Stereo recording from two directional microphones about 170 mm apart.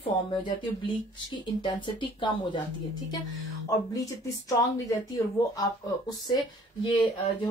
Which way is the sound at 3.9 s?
20° left (ahead or behind).